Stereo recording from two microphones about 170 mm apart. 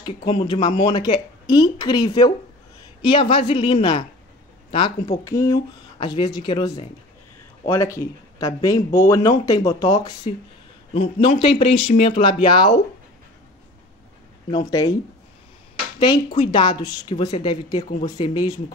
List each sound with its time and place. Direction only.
0.0 s speech: 30° left (ahead or behind)
5.2 s speech: 20° left (ahead or behind)
10.9 s speech: 35° left (ahead or behind)
14.7 s speech: 20° left (ahead or behind)
16.0 s speech: 30° left (ahead or behind)